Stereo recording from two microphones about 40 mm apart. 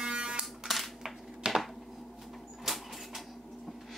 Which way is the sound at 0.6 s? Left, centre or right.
Centre.